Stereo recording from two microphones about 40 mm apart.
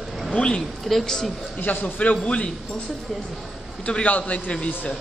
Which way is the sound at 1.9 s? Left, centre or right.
Left.